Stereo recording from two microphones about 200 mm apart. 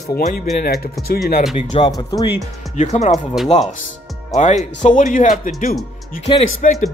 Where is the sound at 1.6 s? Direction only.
30° left (ahead or behind).